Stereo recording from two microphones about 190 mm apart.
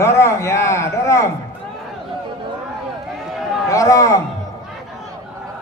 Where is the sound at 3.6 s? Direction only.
15° left (ahead or behind).